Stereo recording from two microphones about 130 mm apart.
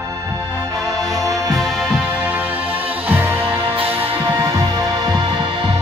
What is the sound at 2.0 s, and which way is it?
Music, 10° right (ahead or behind).